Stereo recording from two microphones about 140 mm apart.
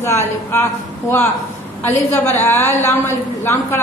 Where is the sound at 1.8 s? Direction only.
15° left (ahead or behind).